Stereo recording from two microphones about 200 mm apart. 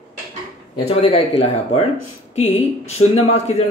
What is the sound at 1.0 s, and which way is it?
Speech, 30° left (ahead or behind).